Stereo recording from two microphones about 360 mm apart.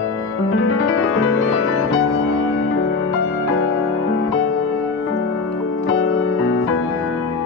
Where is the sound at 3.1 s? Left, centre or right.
Left.